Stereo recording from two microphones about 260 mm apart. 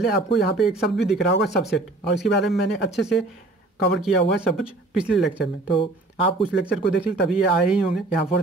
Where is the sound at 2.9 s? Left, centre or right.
Centre.